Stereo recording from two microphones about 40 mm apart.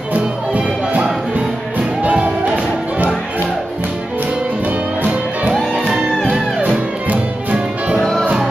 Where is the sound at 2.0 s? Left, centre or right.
Right.